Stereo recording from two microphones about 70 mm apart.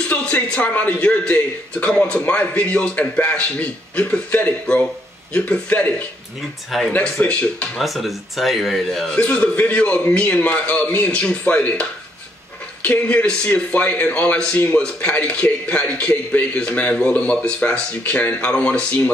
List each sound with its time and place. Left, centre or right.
0.1 s a man's voice: centre
6.9 s a man's voice: centre
7.8 s speech: centre
9.1 s a man's voice: centre